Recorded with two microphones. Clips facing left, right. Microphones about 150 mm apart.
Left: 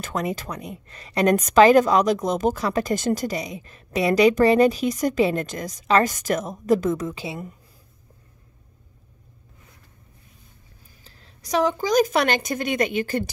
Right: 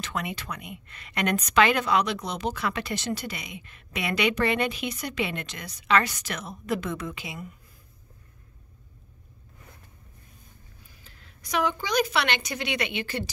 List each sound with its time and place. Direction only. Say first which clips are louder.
0.0 s a woman's voice: left 6 dB; 40° left (ahead or behind)
11.1 s a woman's voice: left 7 dB; 35° left (ahead or behind)